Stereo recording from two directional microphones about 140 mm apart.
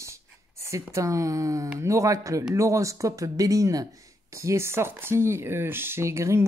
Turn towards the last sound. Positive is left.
turn(degrees=-20)  # may be behind; listen again after turning